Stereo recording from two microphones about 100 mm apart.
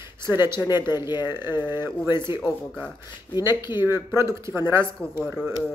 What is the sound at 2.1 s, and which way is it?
Speech, 45° left (ahead or behind).